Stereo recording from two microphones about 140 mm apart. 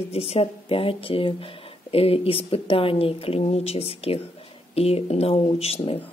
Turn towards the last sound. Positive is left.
turn(degrees=45)  # may be behind; listen again after turning